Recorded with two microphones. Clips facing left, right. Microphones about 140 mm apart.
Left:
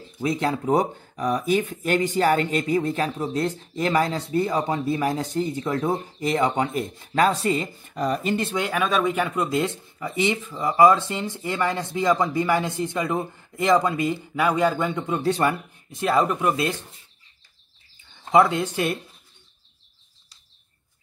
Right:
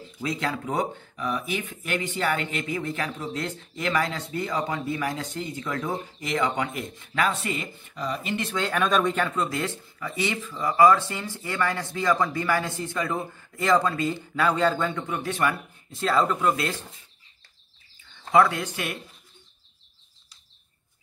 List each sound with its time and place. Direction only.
0.2 s speech: 30° left (ahead or behind)
8.0 s speech: 50° left (ahead or behind)
8.5 s speech: 10° left (ahead or behind); by 15.5 s 30° left (ahead or behind)
15.9 s speech: 15° left (ahead or behind)
18.2 s speech: 20° left (ahead or behind)